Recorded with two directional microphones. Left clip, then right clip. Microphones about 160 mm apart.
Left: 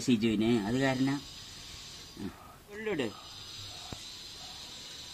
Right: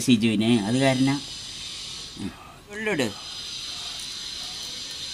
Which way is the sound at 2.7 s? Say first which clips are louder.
Right 8 dB; 45° right (ahead or behind).